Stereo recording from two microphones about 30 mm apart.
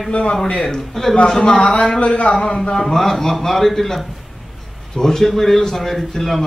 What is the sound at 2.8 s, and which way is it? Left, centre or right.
A man's voice, centre.